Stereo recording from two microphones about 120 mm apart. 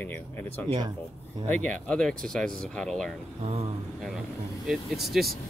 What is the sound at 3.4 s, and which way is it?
Speech, 55° right (ahead or behind).